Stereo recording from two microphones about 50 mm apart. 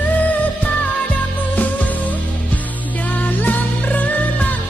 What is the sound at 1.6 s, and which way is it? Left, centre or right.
Music, left.